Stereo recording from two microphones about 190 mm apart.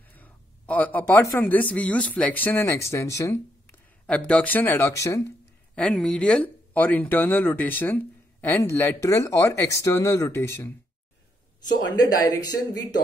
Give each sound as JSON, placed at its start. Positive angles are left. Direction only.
{"t": 0.1, "sound": "speech", "side_deg": 10}